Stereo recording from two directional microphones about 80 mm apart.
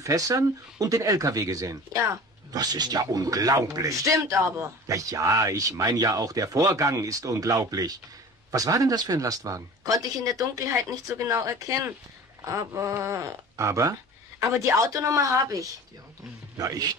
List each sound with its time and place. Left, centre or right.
0.0 s speech: right
2.5 s speech: right